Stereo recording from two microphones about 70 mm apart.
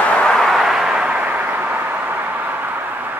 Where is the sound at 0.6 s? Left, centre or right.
Centre.